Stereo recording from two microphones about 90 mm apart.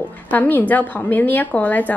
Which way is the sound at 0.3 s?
20° left (ahead or behind).